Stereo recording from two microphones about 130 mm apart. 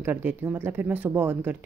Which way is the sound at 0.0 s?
15° right (ahead or behind).